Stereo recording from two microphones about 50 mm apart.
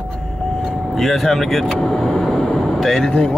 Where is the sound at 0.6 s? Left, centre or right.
Centre.